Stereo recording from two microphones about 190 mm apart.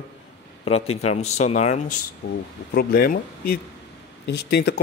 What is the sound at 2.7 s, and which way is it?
Speech, 55° left (ahead or behind).